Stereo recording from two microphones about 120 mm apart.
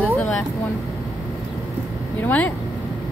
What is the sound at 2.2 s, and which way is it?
Speech, 10° left (ahead or behind).